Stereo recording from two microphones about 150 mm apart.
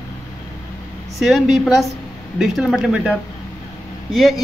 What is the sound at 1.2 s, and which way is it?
Speech, centre (ahead or behind).